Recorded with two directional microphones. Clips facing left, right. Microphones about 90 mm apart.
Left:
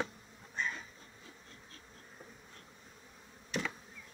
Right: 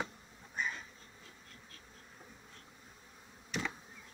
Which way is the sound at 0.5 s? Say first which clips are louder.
Even; 5° right (ahead or behind).